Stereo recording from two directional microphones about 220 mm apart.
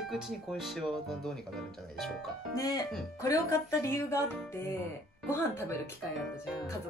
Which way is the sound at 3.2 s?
15° left (ahead or behind).